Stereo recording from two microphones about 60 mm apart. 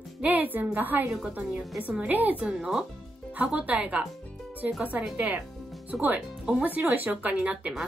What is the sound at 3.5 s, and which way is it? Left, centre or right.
Speech, right.